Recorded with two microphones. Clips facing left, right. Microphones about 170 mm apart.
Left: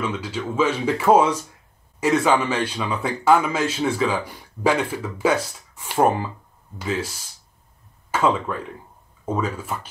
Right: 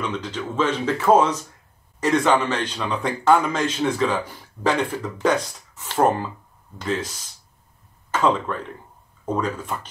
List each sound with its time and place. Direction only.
0.0 s a man's voice: 5° left (ahead or behind)